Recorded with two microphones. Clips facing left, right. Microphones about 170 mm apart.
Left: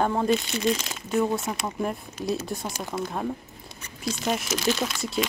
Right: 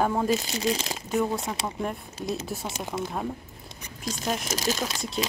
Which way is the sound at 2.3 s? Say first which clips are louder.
Left 3 dB; 5° right (ahead or behind).